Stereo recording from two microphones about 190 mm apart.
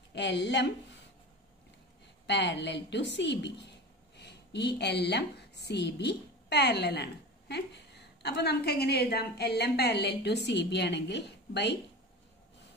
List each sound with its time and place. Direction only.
0.1 s speech: 65° left (ahead or behind)
2.2 s a woman's voice: 65° left (ahead or behind)